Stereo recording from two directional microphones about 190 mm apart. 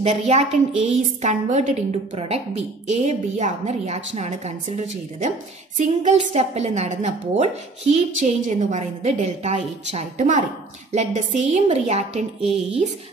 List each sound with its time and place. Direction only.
0.0 s a woman's voice: 35° right (ahead or behind)